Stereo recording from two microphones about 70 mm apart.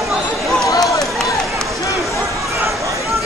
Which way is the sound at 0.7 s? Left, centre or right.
Left.